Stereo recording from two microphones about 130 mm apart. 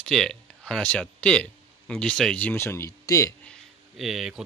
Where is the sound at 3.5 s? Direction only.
Centre (ahead or behind).